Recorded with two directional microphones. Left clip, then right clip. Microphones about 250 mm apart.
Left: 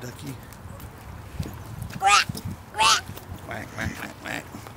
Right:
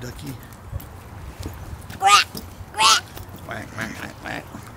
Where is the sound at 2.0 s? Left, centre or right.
Centre.